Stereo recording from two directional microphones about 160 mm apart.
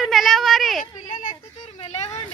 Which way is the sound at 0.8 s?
55° left (ahead or behind).